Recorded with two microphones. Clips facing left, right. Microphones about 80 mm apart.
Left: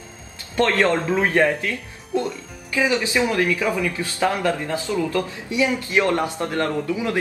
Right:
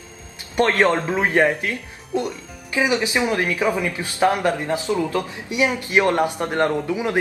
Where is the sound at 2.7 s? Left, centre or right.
Centre.